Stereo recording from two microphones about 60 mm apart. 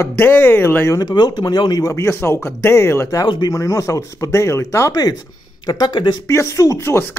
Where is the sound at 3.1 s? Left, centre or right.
Left.